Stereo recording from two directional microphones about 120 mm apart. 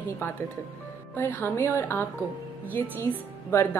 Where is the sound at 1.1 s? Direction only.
15° left (ahead or behind).